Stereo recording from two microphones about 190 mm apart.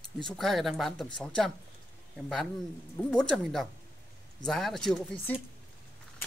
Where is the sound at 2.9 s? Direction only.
5° left (ahead or behind).